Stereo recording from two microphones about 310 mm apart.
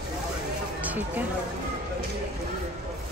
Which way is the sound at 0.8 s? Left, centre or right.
Centre.